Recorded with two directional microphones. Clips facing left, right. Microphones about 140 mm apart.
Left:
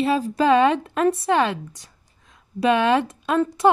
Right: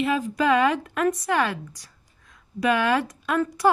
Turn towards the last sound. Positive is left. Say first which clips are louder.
# left 3 dB
turn(degrees=25)  # may be behind; listen again after turning